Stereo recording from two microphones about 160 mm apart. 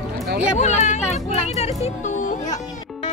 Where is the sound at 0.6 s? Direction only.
45° left (ahead or behind).